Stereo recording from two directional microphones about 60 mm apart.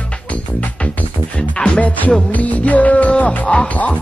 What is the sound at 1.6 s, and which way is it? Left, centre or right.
Music, left.